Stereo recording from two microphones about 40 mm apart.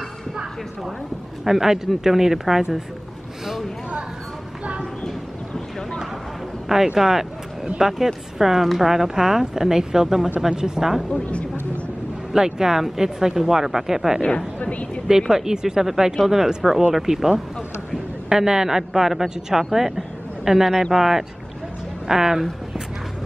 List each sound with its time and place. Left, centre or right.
1.4 s speech: centre
7.0 s speech: centre
11.1 s speech: left
12.4 s speech: centre
14.6 s speech: left
15.0 s a man's voice: centre